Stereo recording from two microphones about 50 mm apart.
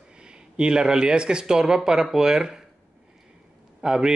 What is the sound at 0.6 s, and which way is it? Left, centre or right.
Speech, centre.